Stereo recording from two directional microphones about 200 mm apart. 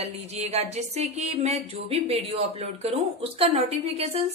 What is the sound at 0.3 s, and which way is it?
Music, 30° right (ahead or behind).